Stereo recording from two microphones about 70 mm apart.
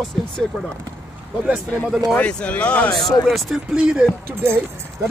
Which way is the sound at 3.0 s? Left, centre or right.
Left.